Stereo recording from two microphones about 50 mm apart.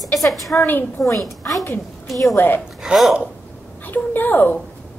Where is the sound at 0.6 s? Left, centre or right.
Left.